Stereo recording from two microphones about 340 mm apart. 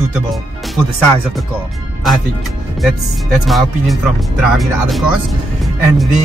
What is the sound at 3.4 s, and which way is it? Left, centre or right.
Speech, centre.